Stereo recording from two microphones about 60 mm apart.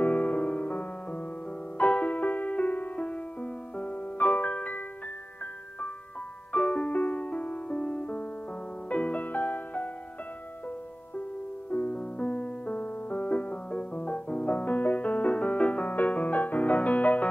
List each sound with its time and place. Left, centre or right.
0.0 s music: left
6.5 s music: left
11.7 s music: left